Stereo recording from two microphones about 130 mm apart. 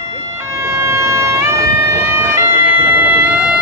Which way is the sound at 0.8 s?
20° right (ahead or behind).